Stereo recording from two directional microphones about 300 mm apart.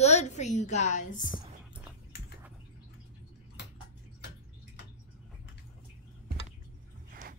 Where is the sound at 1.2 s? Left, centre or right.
Left.